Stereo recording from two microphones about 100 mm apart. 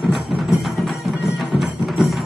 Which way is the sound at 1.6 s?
Centre (ahead or behind).